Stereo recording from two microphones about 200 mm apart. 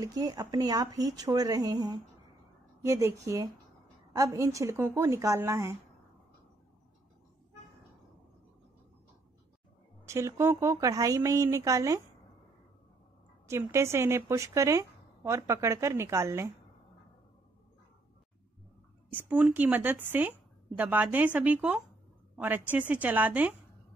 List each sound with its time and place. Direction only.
0.0 s a woman's voice: 20° right (ahead or behind)
10.0 s a woman's voice: 15° right (ahead or behind)
13.5 s a woman's voice: 15° right (ahead or behind)
19.1 s a woman's voice: 10° right (ahead or behind)